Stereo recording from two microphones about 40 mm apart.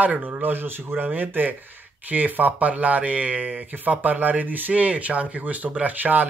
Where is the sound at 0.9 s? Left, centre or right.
Right.